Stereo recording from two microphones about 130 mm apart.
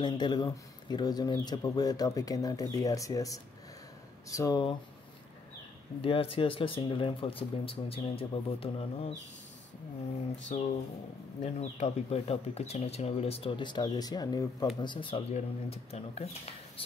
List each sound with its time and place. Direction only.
0.0 s speech: 35° left (ahead or behind)
5.9 s speech: 45° left (ahead or behind)
10.5 s speech: 75° left (ahead or behind)
11.4 s speech: 55° left (ahead or behind)
15.3 s speech: 50° left (ahead or behind)